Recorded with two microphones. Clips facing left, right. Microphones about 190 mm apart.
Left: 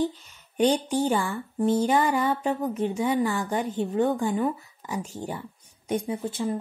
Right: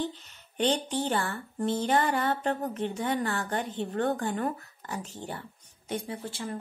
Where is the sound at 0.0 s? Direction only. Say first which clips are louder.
Left 6 dB; 40° left (ahead or behind).